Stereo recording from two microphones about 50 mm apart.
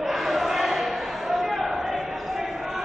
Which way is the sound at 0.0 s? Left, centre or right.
Centre.